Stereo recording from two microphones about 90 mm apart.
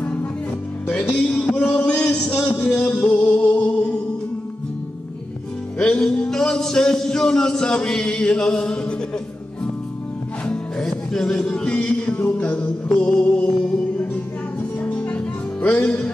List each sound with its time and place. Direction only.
0.8 s music: 15° left (ahead or behind)
5.8 s music: 10° left (ahead or behind)
10.4 s music: 10° left (ahead or behind)